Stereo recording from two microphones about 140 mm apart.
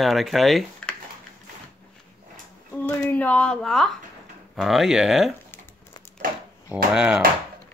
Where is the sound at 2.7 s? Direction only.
10° left (ahead or behind).